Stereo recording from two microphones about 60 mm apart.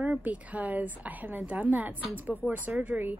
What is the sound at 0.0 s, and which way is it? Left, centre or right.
A woman's voice, right.